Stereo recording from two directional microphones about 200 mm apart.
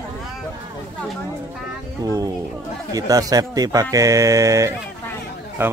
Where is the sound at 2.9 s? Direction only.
15° right (ahead or behind).